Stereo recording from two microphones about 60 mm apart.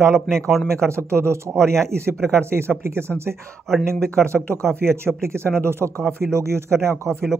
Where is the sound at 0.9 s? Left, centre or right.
Right.